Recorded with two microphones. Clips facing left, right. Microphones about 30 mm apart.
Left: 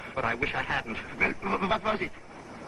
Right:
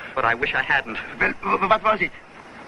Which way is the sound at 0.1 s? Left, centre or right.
Right.